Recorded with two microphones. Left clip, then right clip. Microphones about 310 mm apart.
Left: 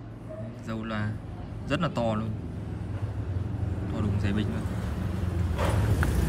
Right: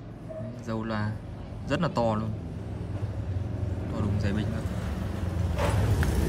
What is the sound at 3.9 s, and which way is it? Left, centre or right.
Speech, centre.